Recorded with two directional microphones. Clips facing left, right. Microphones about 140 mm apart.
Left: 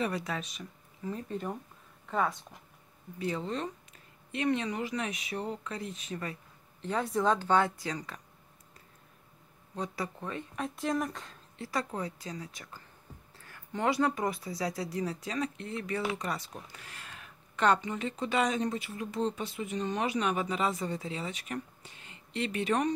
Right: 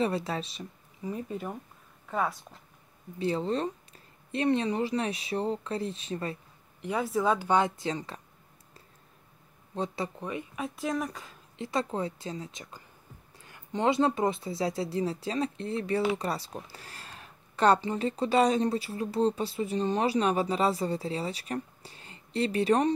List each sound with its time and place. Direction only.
0.0 s speech: 30° right (ahead or behind)
1.0 s speech: 10° right (ahead or behind)
3.2 s speech: 30° right (ahead or behind)
6.8 s speech: 10° right (ahead or behind); by 8.2 s 25° right (ahead or behind)
9.8 s speech: 25° right (ahead or behind); by 11.3 s centre (ahead or behind)
11.5 s speech: 20° right (ahead or behind)